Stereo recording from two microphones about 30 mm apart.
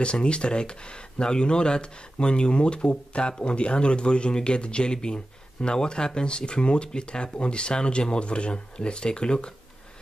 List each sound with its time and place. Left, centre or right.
0.0 s speech: left